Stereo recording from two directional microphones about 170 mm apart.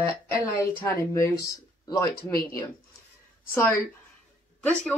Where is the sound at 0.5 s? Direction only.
15° left (ahead or behind).